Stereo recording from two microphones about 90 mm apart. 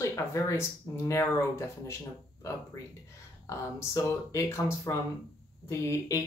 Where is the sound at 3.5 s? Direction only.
35° left (ahead or behind).